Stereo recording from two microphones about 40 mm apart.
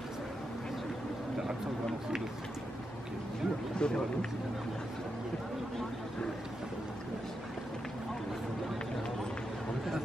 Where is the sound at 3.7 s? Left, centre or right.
Left.